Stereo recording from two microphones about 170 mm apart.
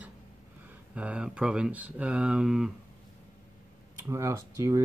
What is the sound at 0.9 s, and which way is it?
Speech, 5° right (ahead or behind).